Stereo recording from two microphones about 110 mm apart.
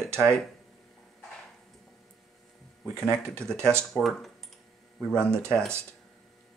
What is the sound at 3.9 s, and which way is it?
Speech, centre (ahead or behind).